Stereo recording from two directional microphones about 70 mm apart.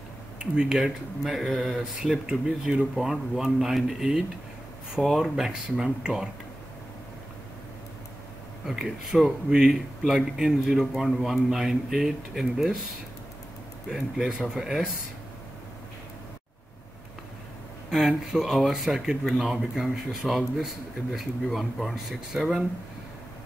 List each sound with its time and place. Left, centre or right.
0.4 s speech: centre
8.6 s speech: centre
13.8 s speech: centre
17.8 s speech: centre